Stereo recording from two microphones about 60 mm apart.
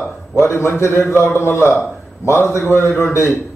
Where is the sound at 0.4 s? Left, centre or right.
Left.